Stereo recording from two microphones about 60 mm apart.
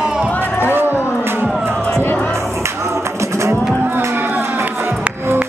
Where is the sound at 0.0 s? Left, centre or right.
Centre.